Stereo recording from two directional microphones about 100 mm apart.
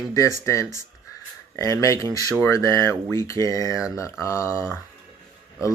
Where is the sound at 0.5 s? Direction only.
30° left (ahead or behind).